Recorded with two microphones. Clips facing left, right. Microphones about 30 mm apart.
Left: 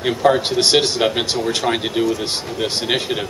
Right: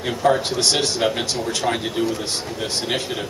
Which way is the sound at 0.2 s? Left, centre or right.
Left.